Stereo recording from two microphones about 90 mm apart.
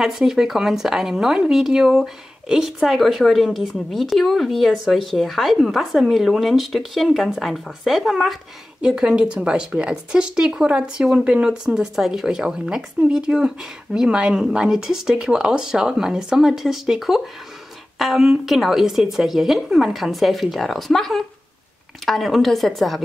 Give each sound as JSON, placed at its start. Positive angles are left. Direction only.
{"t": 0.0, "sound": "speech", "side_deg": -5}